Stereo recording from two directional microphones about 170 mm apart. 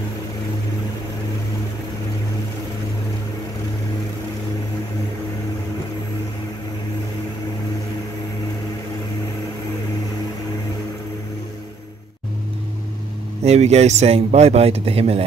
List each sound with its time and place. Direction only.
13.4 s speech: 40° right (ahead or behind)